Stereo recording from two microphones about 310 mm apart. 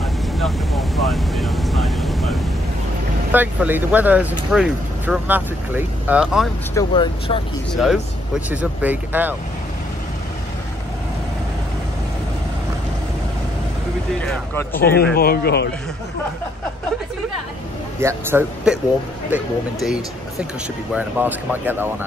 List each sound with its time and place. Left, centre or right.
0.4 s speech: centre
6.7 s speech: centre
7.7 s speech: centre
14.2 s speech: centre
14.8 s a man's voice: left
18.0 s speech: centre